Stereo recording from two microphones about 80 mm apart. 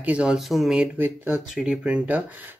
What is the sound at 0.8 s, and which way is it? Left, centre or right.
Speech, right.